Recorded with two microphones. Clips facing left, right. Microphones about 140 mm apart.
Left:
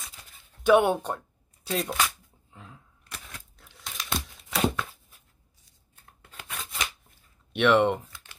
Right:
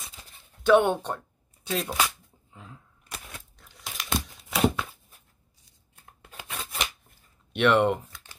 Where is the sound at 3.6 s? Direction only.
Centre (ahead or behind).